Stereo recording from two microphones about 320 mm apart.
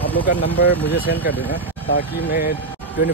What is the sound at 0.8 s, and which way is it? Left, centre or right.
Speech, left.